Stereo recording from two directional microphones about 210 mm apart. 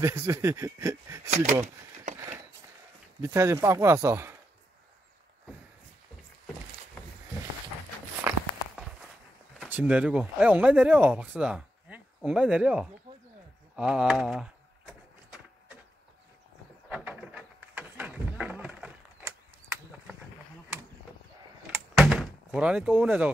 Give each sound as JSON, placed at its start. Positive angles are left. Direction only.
{"t": 0.0, "sound": "speech", "side_deg": -15}
{"t": 2.1, "sound": "a sound", "side_deg": -40}
{"t": 3.2, "sound": "speech", "side_deg": -15}
{"t": 8.2, "sound": "walk", "side_deg": -5}
{"t": 9.7, "sound": "speech", "side_deg": -5}
{"t": 16.9, "sound": "a sound", "side_deg": -5}
{"t": 21.7, "sound": "door", "side_deg": 0}